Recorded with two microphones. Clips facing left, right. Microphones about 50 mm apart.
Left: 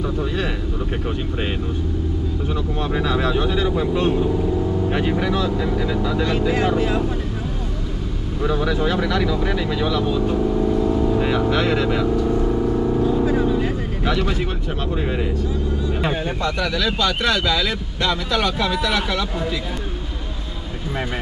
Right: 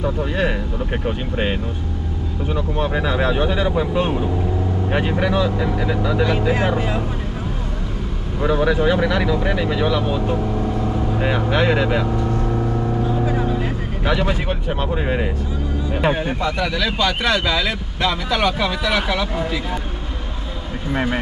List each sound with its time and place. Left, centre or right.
0.0 s speech: centre
2.5 s speech: centre
8.4 s speech: right
13.2 s vehicle: centre
15.0 s speech: right